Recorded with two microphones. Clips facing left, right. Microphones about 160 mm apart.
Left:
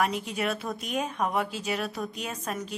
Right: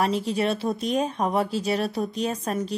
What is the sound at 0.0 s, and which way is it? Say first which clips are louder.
Speech: right 5 dB; 35° right (ahead or behind).